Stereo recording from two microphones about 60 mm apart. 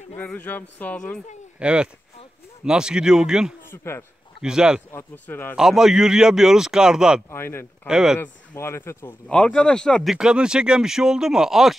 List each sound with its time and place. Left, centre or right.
0.3 s speech: left
0.9 s speech: centre
1.6 s speech: centre
3.7 s speech: left
4.4 s speech: centre
5.1 s speech: left
5.6 s speech: centre
7.2 s speech: left
7.8 s speech: centre
8.5 s speech: left
9.3 s speech: centre
10.0 s speech: centre